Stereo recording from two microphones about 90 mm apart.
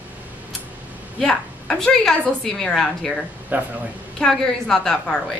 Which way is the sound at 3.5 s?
20° right (ahead or behind).